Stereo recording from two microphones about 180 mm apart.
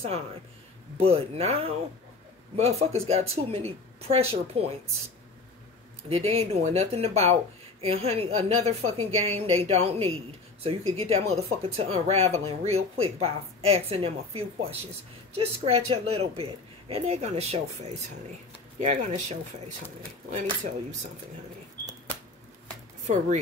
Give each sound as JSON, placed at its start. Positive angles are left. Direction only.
{"t": 0.9, "sound": "speech", "side_deg": -35}
{"t": 6.0, "sound": "speech", "side_deg": -35}
{"t": 23.0, "sound": "speech", "side_deg": -40}